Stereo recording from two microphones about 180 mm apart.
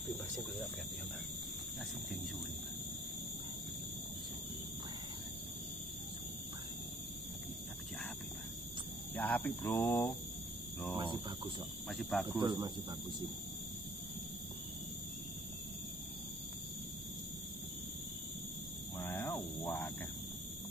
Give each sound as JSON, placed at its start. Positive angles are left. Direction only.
{"t": 9.1, "sound": "speech", "side_deg": 10}
{"t": 11.0, "sound": "speech", "side_deg": -25}
{"t": 11.9, "sound": "speech", "side_deg": 0}
{"t": 12.4, "sound": "speech", "side_deg": -25}
{"t": 18.9, "sound": "a sound", "side_deg": 15}